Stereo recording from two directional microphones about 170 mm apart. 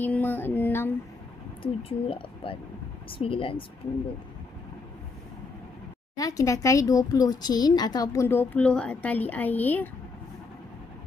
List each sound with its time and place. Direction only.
0.0 s music: 10° left (ahead or behind)
1.6 s a woman's voice: 35° left (ahead or behind)
6.1 s speech: 20° left (ahead or behind)